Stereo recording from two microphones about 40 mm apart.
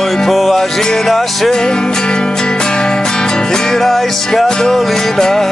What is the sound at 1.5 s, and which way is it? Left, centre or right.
Music, centre.